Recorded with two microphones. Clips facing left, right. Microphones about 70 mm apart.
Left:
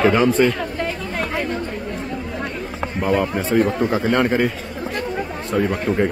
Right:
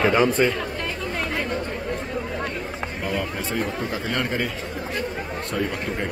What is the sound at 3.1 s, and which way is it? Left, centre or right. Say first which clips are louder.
Speech: left 9 dB; left.